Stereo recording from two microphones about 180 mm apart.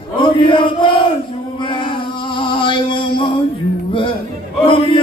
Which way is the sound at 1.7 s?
30° left (ahead or behind).